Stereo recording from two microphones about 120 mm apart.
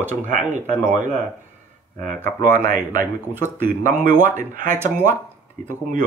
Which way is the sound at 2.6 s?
90° right.